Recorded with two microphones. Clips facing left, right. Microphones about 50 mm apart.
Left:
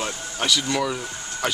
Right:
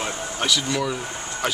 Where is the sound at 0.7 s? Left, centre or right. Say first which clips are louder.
Even; centre.